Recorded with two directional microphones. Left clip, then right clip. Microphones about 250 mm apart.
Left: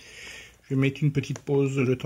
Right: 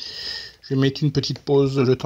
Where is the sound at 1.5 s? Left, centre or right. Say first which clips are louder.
Right 6 dB; centre.